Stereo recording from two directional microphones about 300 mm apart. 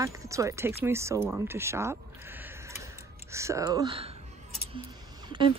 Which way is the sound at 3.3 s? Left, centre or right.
Centre.